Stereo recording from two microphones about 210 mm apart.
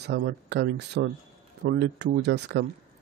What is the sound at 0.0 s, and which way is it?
Speech, 50° right (ahead or behind).